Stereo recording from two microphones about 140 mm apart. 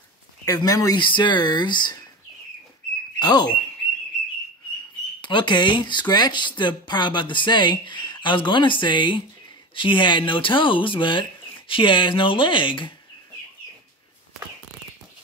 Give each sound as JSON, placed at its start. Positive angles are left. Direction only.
{"t": 0.5, "sound": "speech", "side_deg": 25}
{"t": 3.2, "sound": "speech", "side_deg": 30}
{"t": 5.2, "sound": "speech", "side_deg": 35}